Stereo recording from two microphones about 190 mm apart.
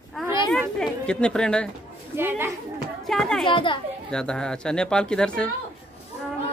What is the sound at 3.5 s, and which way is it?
Speech, 25° left (ahead or behind).